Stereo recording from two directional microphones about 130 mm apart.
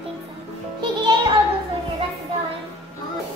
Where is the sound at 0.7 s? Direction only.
35° right (ahead or behind).